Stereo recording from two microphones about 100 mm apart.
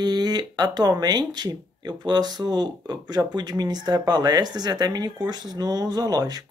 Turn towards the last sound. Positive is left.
turn(degrees=-40)  # may be behind; listen again after turning